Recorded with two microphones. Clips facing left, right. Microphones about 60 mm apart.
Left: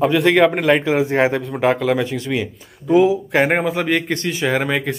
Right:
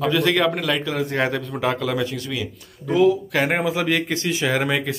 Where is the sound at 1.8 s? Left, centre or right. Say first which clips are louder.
Left 5 dB; centre.